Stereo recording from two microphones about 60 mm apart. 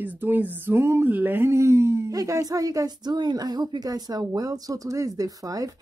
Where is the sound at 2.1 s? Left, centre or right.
Right.